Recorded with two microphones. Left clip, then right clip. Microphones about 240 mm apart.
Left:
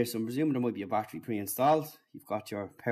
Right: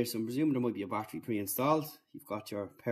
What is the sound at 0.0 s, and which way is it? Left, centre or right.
Speech, centre.